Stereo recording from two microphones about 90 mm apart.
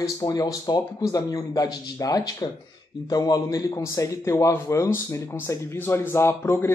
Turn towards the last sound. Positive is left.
turn(degrees=30)  # may be behind; listen again after turning